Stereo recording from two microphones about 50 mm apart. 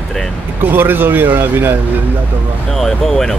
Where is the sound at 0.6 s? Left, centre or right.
Right.